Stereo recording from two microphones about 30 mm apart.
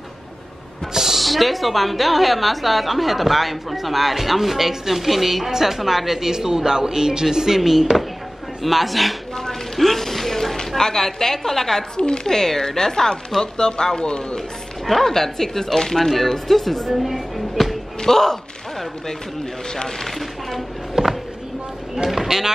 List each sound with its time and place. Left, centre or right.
0.9 s a sound: centre
1.2 s a woman's voice: centre
8.6 s a sound: centre
10.8 s speech: centre
14.9 s speech: centre
16.9 s music: centre
18.0 s speech: centre
20.9 s a sound: centre
21.9 s speech: centre